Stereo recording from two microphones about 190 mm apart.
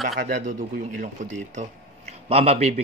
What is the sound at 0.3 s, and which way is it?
Speech, 45° right (ahead or behind).